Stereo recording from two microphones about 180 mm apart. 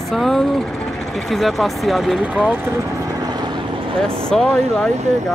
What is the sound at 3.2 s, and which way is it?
Vehicle, 25° right (ahead or behind).